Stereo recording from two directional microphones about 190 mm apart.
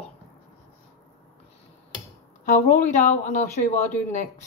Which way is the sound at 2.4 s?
40° left (ahead or behind).